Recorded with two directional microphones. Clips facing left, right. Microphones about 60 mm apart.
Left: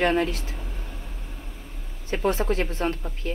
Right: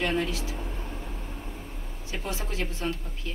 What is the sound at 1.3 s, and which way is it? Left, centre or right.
Vehicle, centre.